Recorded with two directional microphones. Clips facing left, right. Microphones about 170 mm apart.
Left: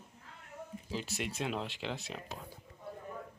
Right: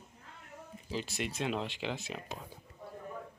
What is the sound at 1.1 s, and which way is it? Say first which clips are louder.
Speech: right 2 dB; 5° left (ahead or behind).